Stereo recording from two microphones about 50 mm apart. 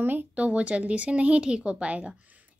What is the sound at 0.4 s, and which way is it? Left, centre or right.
A woman's voice, right.